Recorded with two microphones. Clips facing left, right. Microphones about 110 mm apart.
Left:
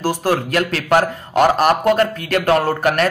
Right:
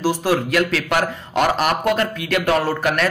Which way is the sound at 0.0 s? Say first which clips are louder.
Even; 50° left (ahead or behind).